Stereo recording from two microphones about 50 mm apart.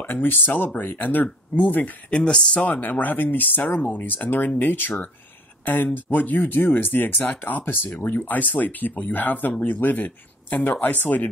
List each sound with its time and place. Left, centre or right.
0.0 s speech: left
2.0 s speech: left
2.7 s speech: left